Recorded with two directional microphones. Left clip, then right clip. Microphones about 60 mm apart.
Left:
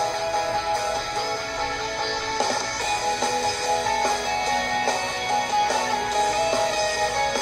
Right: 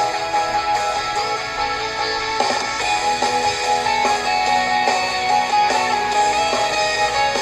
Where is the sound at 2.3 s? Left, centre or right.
Right.